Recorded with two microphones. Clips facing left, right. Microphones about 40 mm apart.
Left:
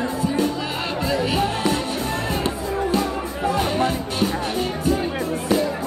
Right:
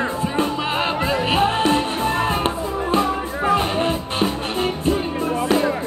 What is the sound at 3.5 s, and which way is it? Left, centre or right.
Music, right.